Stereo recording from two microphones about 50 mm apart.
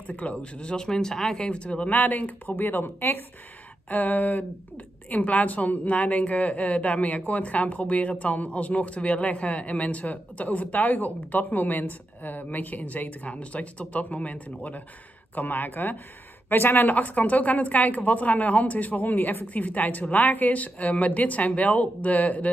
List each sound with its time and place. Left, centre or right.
0.0 s a woman's voice: left
2.5 s a woman's voice: left